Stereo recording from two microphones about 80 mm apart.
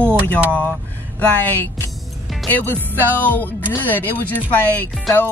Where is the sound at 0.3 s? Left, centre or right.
Left.